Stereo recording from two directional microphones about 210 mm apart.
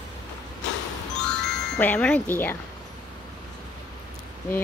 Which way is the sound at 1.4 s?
5° left (ahead or behind).